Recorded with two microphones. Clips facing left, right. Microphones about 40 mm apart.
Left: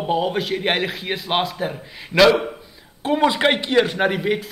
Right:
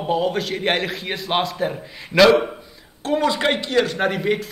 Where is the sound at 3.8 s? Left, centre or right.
Centre.